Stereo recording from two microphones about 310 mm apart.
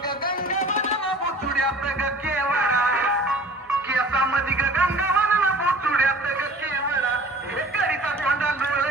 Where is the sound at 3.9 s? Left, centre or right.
Centre.